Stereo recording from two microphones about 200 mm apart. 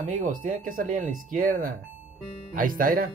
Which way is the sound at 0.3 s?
45° right (ahead or behind).